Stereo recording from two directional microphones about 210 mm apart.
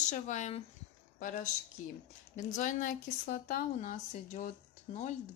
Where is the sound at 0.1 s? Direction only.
35° left (ahead or behind).